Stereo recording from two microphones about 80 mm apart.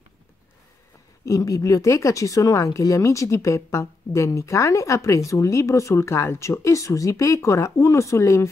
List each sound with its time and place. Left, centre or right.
1.2 s speech: left